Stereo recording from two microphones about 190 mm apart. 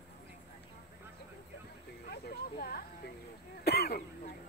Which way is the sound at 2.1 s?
55° left (ahead or behind).